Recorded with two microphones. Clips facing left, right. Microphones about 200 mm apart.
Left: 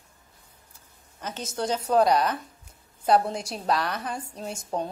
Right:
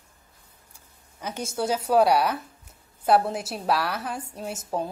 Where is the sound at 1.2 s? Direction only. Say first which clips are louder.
Right 2 dB; 10° right (ahead or behind).